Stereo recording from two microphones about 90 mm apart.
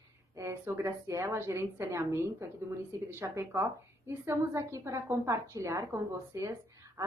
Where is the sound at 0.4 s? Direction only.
30° right (ahead or behind).